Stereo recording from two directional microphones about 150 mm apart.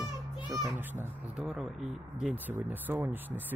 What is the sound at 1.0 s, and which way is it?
Speech, 10° right (ahead or behind).